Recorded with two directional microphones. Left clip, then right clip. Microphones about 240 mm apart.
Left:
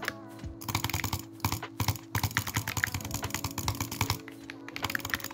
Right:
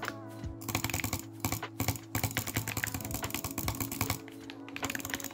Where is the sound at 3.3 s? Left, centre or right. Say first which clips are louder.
Left 3 dB; centre.